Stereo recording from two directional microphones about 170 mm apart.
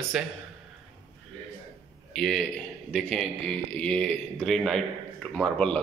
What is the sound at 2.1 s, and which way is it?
A man's voice, centre (ahead or behind).